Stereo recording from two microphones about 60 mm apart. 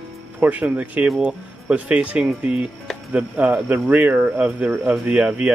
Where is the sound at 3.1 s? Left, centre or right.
Right.